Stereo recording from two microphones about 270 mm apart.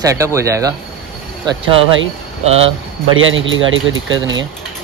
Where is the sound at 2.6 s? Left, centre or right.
Right.